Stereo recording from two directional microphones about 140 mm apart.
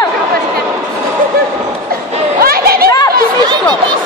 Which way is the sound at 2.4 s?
90° right.